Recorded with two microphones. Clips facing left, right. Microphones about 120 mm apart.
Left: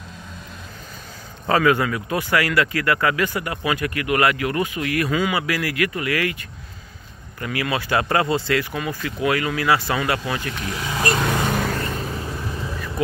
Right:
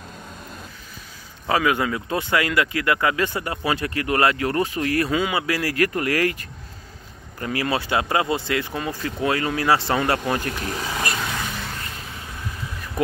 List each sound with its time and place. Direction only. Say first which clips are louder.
1.5 s speech: left 3 dB; 15° right (ahead or behind); by 6.3 s 40° right (ahead or behind)
7.3 s speech: right 1 dB; 35° right (ahead or behind)
7.9 s speech: left 4 dB; 15° right (ahead or behind)
8.7 s speech: even; 30° right (ahead or behind)
10.1 s speech: right 2 dB; 45° right (ahead or behind)
10.6 s speech: even; 35° right (ahead or behind)
11.0 s vehicle: left 5 dB; 50° left (ahead or behind)
11.9 s vehicle: left 9 dB; 40° left (ahead or behind)